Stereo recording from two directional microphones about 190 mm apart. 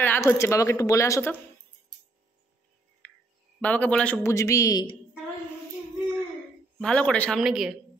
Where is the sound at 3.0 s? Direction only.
10° left (ahead or behind).